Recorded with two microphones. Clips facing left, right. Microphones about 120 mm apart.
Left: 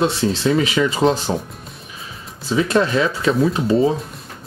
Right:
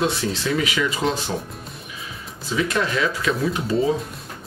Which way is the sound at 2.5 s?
30° left (ahead or behind).